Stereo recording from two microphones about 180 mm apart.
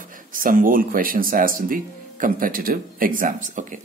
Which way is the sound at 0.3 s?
50° right (ahead or behind).